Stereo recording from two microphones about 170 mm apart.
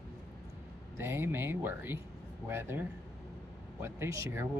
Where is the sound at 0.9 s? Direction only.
15° right (ahead or behind).